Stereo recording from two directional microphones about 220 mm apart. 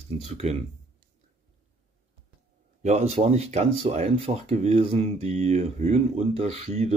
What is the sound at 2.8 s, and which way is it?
Speech, 30° right (ahead or behind).